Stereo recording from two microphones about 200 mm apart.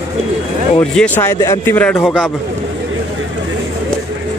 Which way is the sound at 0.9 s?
10° left (ahead or behind).